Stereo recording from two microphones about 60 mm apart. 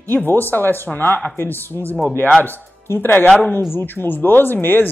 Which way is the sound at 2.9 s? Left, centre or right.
Left.